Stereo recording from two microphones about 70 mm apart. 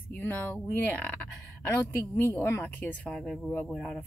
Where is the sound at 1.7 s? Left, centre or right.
Left.